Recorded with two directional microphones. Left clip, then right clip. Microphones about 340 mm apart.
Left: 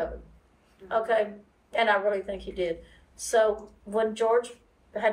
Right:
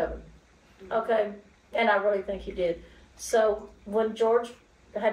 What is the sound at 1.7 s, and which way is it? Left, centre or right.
Speech, centre.